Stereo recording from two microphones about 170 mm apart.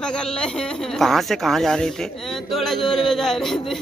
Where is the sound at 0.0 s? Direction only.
5° left (ahead or behind).